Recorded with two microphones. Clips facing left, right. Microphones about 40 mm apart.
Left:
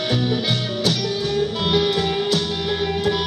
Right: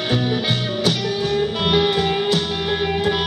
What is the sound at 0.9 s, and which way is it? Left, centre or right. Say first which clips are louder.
Music: right 2 dB; centre.